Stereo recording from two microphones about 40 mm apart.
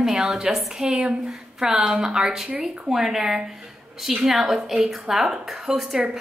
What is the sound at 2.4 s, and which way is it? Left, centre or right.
Speech, right.